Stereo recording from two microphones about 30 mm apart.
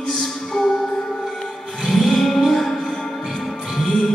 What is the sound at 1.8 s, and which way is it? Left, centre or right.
Music, centre.